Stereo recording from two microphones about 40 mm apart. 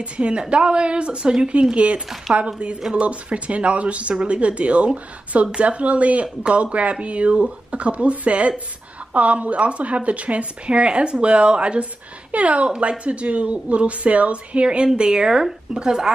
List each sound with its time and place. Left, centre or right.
0.0 s a woman's voice: right
15.0 s speech: centre